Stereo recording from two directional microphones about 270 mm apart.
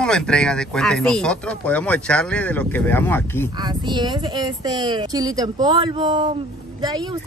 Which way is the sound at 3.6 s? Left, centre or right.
Centre.